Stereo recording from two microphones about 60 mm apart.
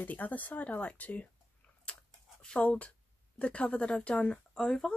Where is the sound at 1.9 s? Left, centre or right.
Left.